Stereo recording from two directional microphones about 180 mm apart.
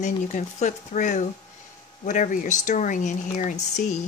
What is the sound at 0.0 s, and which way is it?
Speech, 40° left (ahead or behind).